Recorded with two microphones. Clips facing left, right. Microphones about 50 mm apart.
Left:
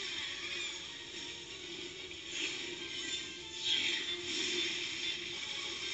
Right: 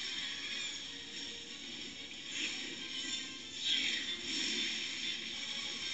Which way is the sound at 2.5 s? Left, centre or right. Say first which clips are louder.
Left 1 dB; centre.